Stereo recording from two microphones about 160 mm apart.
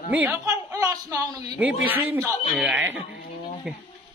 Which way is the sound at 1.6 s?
10° right (ahead or behind).